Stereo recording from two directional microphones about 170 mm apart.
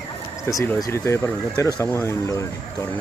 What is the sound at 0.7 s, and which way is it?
Speech, 20° left (ahead or behind).